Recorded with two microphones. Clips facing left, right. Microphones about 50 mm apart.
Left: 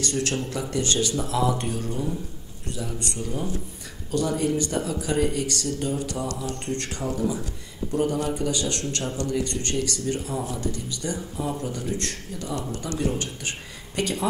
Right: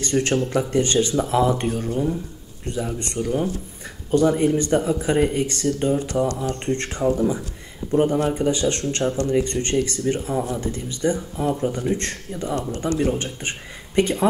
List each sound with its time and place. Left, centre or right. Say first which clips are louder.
0.0 s speech: right 6 dB; right
1.9 s speech: right 6 dB; right
2.7 s speech: right 5 dB; right